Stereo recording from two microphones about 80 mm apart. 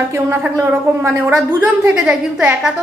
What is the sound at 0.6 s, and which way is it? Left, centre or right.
Speech, right.